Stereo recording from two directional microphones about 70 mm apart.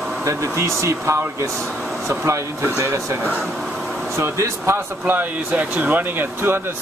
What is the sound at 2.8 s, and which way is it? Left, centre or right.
Speech, right.